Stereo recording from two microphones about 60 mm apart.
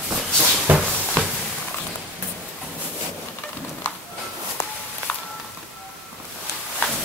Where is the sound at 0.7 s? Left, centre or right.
Right.